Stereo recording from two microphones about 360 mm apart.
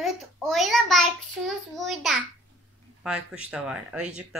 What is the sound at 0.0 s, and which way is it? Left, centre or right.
Child singing, centre.